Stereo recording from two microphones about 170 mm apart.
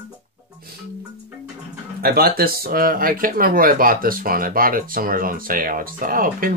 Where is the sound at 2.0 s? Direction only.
65° right (ahead or behind).